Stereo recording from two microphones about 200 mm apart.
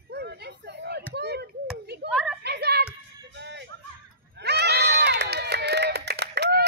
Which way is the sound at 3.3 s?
60° right (ahead or behind).